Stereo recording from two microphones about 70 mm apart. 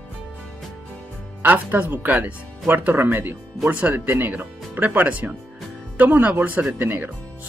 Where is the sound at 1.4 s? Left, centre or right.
Right.